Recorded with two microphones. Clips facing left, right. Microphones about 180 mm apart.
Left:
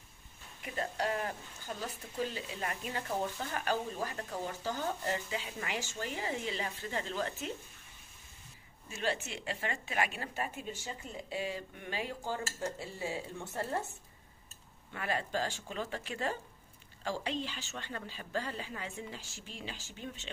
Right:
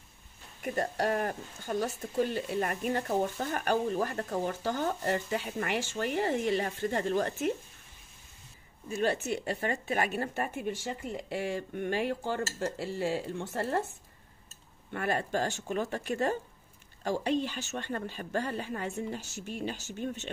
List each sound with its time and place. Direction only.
0.6 s speech: 45° right (ahead or behind)
9.0 s speech: 40° right (ahead or behind); by 13.2 s 75° right (ahead or behind)
13.5 s speech: 60° right (ahead or behind)
14.9 s speech: 50° right (ahead or behind)